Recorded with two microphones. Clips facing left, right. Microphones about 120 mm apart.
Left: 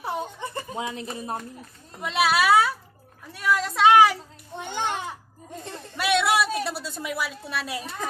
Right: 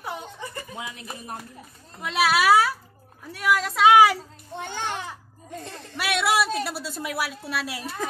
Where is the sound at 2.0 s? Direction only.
Centre (ahead or behind).